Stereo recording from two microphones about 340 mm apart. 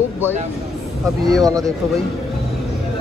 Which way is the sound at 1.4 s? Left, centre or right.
Centre.